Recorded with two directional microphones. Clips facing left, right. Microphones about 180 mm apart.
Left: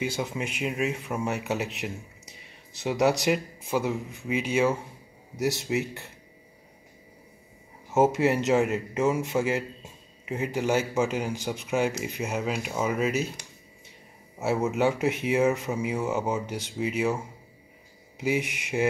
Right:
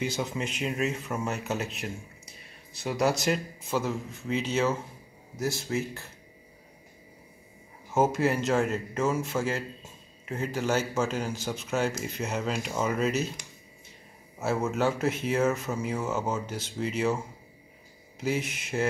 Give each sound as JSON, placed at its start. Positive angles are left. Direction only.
{"t": 0.0, "sound": "speech", "side_deg": 10}
{"t": 7.9, "sound": "speech", "side_deg": 20}
{"t": 14.4, "sound": "speech", "side_deg": 15}
{"t": 18.2, "sound": "speech", "side_deg": 15}